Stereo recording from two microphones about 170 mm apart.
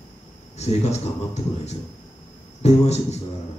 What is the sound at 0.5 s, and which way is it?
Speech, 40° left (ahead or behind).